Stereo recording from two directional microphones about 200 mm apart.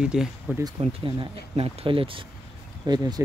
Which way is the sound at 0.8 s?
30° right (ahead or behind).